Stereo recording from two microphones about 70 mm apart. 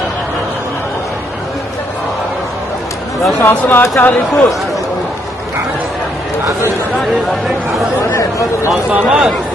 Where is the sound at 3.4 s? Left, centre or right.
Left.